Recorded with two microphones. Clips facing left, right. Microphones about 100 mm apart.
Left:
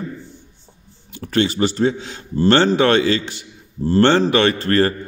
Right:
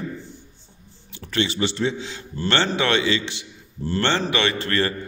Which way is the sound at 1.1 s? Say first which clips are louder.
Left 6 dB; 45° left (ahead or behind).